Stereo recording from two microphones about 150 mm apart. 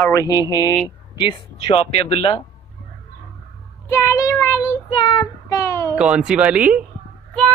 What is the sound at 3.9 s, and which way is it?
Child singing, 20° left (ahead or behind).